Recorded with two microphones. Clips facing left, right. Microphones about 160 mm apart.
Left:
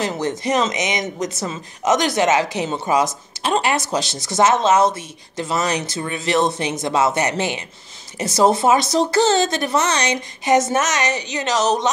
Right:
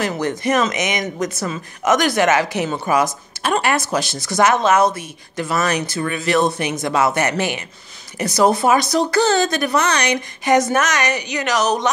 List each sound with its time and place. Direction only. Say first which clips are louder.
0.0 s speech: right 1 dB; 20° left (ahead or behind)